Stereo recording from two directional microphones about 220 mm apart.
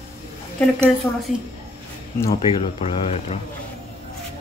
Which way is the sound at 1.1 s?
10° left (ahead or behind).